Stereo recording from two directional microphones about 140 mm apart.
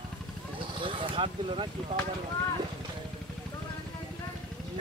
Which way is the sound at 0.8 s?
40° right (ahead or behind).